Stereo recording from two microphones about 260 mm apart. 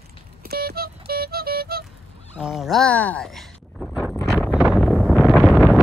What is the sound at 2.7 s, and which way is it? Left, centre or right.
Speech, centre.